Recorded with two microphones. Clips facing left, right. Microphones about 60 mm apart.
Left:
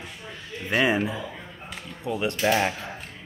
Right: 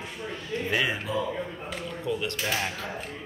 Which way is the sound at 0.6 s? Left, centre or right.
Centre.